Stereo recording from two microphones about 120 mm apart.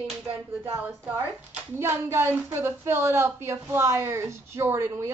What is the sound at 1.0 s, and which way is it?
A woman's voice, 15° right (ahead or behind).